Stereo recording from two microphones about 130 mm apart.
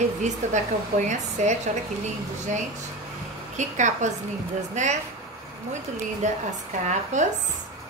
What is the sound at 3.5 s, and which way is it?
A woman's voice, 65° right (ahead or behind).